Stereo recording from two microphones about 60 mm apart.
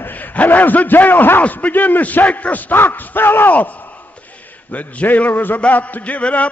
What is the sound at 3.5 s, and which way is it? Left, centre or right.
A man's voice, left.